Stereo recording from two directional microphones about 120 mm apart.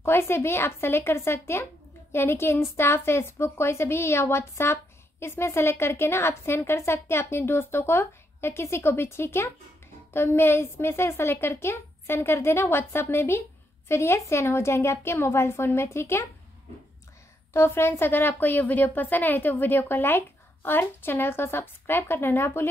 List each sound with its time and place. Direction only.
0.0 s speech: 20° left (ahead or behind)
17.5 s speech: 20° left (ahead or behind)